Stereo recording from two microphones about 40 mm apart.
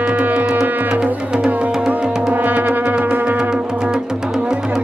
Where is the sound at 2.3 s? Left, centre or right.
Right.